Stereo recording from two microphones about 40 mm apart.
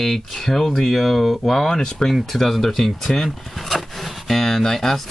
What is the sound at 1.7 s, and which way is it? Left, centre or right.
Speech, centre.